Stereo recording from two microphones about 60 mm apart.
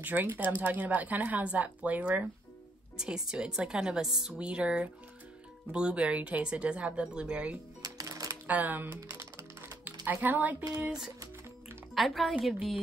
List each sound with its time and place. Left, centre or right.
0.0 s speech: right
3.0 s speech: centre
7.8 s music: right
8.5 s speech: right
10.8 s speech: centre
11.9 s a woman's voice: centre